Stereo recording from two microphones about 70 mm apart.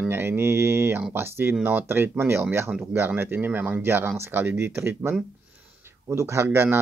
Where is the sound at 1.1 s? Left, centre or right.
Right.